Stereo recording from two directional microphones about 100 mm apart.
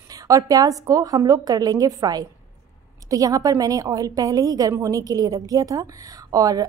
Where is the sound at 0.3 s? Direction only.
40° right (ahead or behind).